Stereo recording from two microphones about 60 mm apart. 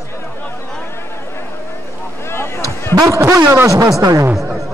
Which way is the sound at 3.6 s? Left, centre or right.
Right.